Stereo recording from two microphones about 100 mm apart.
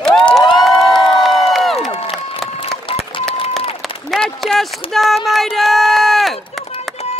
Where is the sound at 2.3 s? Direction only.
65° left (ahead or behind).